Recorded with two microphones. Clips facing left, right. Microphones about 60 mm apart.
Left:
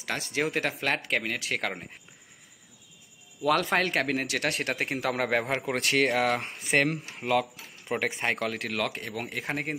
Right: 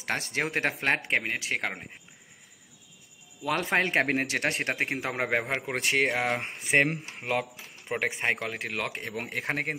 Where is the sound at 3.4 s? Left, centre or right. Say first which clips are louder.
Left 2 dB; centre.